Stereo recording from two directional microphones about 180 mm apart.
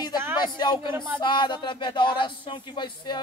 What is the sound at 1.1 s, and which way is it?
Speech, 25° left (ahead or behind).